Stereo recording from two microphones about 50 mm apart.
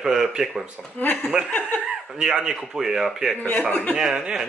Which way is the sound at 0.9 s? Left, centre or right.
Left.